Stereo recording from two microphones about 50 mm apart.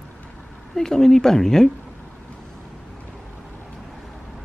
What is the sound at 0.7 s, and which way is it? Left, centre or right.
Speech, centre.